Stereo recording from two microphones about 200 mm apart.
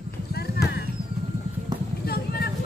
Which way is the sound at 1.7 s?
20° right (ahead or behind).